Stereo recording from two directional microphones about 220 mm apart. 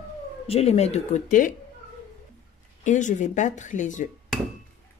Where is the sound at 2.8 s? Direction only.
35° left (ahead or behind).